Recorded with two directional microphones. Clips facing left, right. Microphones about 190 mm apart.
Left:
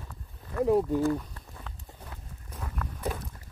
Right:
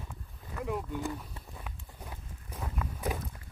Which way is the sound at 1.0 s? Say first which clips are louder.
Left 9 dB; 15° right (ahead or behind).